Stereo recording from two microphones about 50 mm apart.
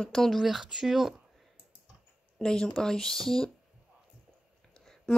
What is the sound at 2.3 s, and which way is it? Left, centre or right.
Speech, centre.